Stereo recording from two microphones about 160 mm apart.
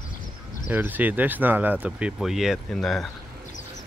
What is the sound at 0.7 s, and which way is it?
Speech, 10° right (ahead or behind).